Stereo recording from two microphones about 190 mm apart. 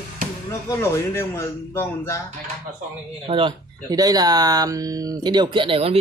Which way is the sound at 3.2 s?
25° right (ahead or behind).